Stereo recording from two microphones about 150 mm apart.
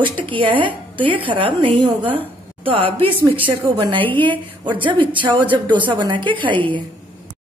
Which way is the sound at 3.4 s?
35° right (ahead or behind).